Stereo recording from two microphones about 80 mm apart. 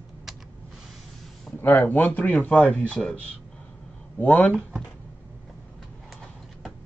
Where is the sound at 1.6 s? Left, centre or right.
Left.